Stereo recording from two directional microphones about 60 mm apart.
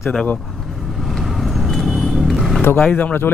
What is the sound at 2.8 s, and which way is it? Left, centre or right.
Speech, left.